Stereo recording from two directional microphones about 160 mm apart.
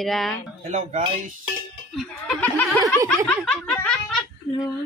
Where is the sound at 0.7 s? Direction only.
45° right (ahead or behind).